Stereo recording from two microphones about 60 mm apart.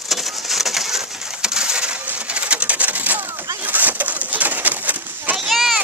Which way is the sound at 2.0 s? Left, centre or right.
Right.